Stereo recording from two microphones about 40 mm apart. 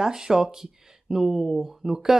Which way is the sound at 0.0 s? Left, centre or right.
Centre.